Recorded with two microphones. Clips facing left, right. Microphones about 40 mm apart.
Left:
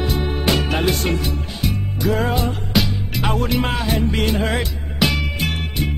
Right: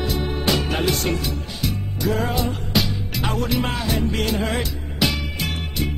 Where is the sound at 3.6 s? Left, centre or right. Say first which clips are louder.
Left 3 dB; left.